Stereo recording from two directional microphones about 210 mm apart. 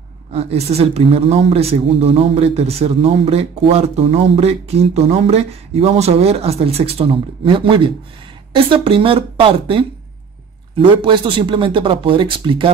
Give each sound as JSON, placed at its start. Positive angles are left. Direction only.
{"t": 0.3, "sound": "a woman's voice", "side_deg": -30}